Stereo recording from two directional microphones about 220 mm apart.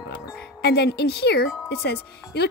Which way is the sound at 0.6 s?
50° left (ahead or behind).